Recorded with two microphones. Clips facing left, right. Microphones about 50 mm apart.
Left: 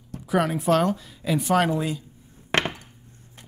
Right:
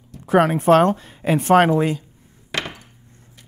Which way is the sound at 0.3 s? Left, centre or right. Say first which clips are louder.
Right 7 dB; right.